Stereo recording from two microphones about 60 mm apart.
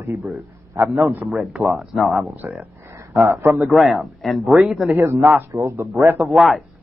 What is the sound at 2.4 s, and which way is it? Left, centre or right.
Speech, right.